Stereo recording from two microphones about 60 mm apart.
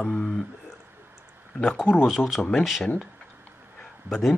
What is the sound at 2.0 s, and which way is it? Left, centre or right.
Speech, centre.